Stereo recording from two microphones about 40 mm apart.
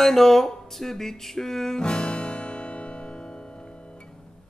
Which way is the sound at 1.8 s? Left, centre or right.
Left.